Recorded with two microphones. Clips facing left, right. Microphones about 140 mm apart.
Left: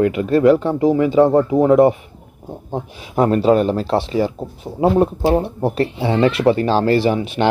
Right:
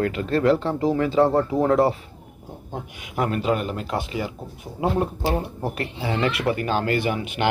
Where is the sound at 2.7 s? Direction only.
35° left (ahead or behind).